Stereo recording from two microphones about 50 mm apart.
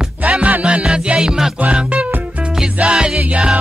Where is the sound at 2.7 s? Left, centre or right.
Centre.